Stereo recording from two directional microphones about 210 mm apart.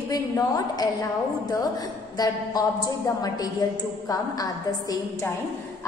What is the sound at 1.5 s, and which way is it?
A woman's voice, 20° left (ahead or behind).